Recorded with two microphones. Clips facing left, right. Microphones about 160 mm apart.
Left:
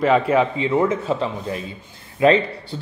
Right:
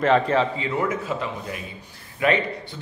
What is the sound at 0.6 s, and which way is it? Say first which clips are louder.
A man's voice: left 6 dB; 25° left (ahead or behind).